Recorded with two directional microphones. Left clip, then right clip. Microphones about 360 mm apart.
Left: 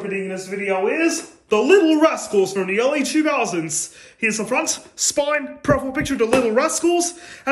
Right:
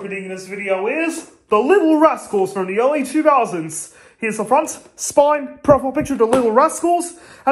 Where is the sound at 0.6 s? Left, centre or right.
Centre.